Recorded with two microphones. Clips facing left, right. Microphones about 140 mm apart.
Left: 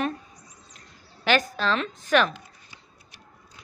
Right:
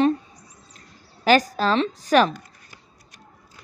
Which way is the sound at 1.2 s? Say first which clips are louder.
Right 5 dB; 40° right (ahead or behind).